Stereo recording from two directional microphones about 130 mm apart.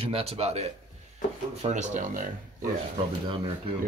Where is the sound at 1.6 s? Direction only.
70° right (ahead or behind).